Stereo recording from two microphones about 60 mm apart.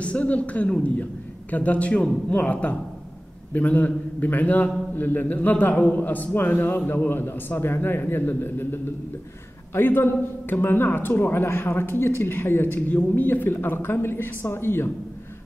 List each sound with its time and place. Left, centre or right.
0.0 s a man's voice: left